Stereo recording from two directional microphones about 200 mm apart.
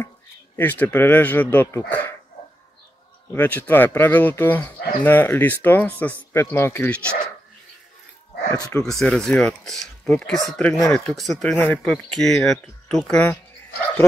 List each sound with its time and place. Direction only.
0.6 s speech: 10° left (ahead or behind)
3.3 s speech: 10° left (ahead or behind)
8.5 s speech: 15° left (ahead or behind)
8.8 s speech: centre (ahead or behind)